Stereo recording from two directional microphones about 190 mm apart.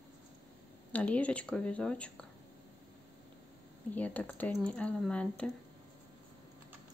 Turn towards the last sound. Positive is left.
turn(degrees=5)  # may be behind; listen again after turning